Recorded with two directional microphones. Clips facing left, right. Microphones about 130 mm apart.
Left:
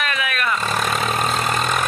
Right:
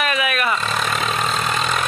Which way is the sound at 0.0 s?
10° right (ahead or behind).